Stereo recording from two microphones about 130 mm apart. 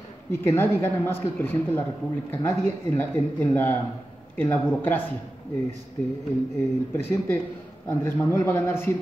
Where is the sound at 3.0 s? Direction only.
15° left (ahead or behind).